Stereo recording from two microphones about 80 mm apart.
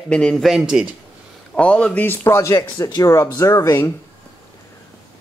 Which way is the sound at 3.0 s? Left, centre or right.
Left.